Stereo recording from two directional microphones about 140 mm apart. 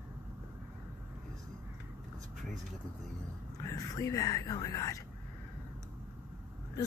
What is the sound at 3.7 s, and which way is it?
Speech, 25° left (ahead or behind).